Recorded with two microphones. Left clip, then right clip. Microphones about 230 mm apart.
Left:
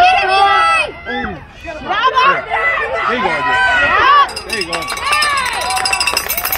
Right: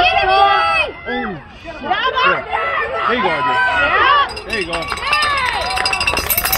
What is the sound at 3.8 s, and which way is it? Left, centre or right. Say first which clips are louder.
Run: left 3 dB; left.